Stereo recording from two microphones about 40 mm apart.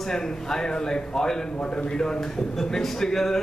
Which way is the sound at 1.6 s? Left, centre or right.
Left.